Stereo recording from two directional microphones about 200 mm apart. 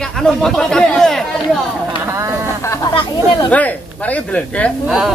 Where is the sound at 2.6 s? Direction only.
20° left (ahead or behind).